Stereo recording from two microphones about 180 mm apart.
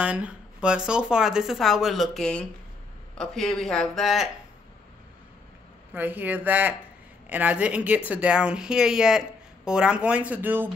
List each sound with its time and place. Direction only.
0.0 s speech: 5° right (ahead or behind)
5.9 s speech: 10° right (ahead or behind)